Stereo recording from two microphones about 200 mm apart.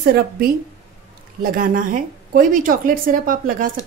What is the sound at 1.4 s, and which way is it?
A woman's voice, 45° right (ahead or behind).